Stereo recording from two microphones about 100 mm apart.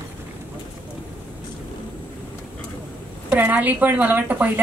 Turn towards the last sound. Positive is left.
turn(degrees=-15)  # may be behind; listen again after turning